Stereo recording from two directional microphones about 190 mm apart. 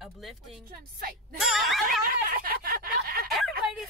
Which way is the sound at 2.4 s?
50° right (ahead or behind).